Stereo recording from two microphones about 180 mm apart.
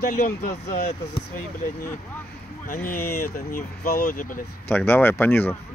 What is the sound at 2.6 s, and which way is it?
Speech, 50° left (ahead or behind).